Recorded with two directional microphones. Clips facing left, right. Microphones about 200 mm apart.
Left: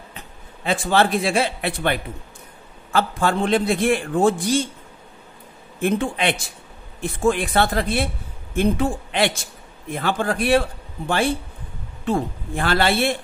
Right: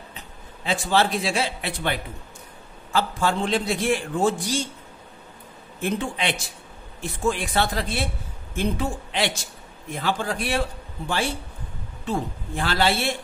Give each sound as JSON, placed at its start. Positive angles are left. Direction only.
{"t": 0.7, "sound": "a man's voice", "side_deg": 55}
{"t": 5.8, "sound": "a man's voice", "side_deg": 55}
{"t": 12.1, "sound": "a man's voice", "side_deg": 55}